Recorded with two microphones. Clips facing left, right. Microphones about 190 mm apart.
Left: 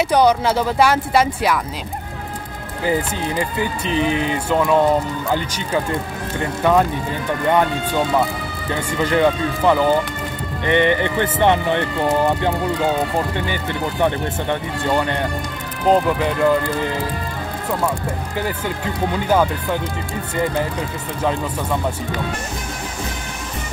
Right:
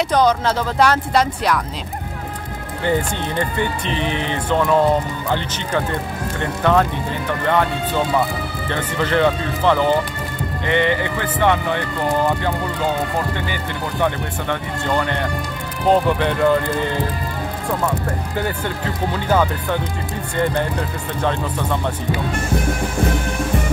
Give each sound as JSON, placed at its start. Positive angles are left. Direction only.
{"t": 0.1, "sound": "speech", "side_deg": 10}
{"t": 2.8, "sound": "speech", "side_deg": 5}
{"t": 6.6, "sound": "speech", "side_deg": 10}
{"t": 13.9, "sound": "speech", "side_deg": 15}
{"t": 15.9, "sound": "speech", "side_deg": 5}
{"t": 19.2, "sound": "speech", "side_deg": 10}
{"t": 21.2, "sound": "speech", "side_deg": 5}